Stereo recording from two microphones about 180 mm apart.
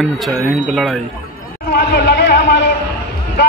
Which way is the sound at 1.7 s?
65° left (ahead or behind).